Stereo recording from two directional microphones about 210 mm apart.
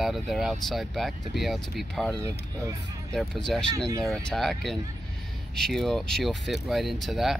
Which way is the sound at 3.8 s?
15° right (ahead or behind).